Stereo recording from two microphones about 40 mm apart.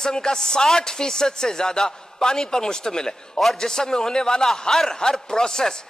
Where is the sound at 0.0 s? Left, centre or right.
Centre.